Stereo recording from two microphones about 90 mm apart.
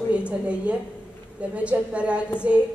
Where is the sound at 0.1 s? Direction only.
15° right (ahead or behind).